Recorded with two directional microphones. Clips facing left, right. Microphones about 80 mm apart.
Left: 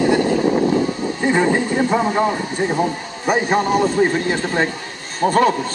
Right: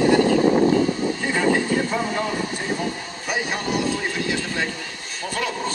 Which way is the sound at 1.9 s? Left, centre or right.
Left.